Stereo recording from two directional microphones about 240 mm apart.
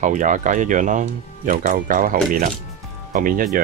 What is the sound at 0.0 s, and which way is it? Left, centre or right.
Speech, right.